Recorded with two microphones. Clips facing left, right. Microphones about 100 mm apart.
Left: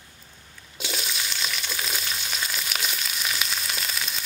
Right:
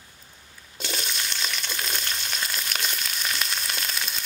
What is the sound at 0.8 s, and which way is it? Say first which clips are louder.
Frying: even; centre (ahead or behind).